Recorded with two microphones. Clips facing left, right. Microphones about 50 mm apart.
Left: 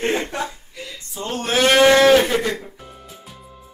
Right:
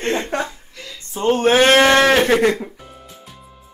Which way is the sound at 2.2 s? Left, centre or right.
Right.